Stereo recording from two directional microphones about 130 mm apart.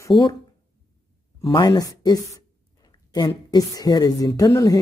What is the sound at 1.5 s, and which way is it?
Speech, 30° left (ahead or behind).